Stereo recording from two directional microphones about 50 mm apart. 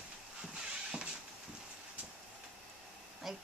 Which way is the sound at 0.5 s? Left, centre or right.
Centre.